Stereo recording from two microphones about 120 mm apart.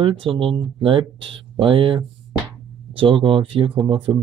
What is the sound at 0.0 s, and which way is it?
Speech, 45° right (ahead or behind).